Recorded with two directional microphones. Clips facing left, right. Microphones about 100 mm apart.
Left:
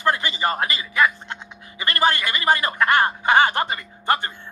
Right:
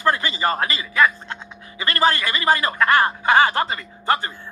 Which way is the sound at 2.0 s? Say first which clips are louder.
Right 1 dB; 25° left (ahead or behind).